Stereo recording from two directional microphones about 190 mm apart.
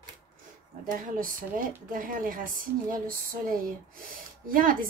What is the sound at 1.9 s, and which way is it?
A woman's voice, 45° right (ahead or behind).